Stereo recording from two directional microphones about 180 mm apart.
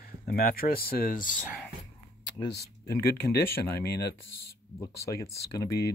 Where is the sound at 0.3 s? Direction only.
55° left (ahead or behind).